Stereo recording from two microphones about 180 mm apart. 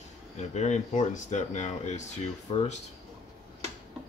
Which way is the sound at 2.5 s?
25° left (ahead or behind).